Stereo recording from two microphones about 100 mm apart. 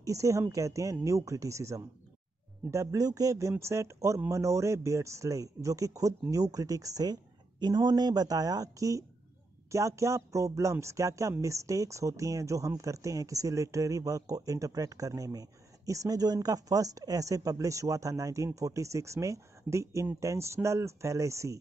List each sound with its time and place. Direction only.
0.0 s speech: 30° right (ahead or behind)